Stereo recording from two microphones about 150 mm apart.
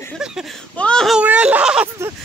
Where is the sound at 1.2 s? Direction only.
10° right (ahead or behind).